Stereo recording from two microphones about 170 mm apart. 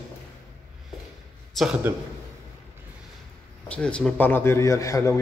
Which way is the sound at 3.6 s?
5° left (ahead or behind).